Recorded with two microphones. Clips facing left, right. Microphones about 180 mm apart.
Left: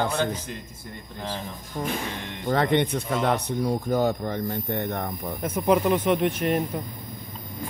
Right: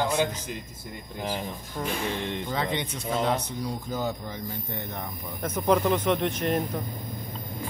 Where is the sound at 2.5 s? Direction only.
60° left (ahead or behind).